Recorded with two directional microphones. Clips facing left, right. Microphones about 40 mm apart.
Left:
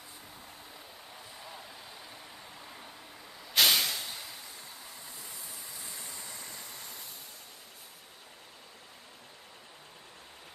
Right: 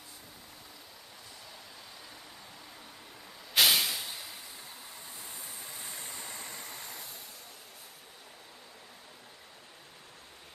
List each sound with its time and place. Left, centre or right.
3.5 s vehicle: centre
5.9 s vehicle: right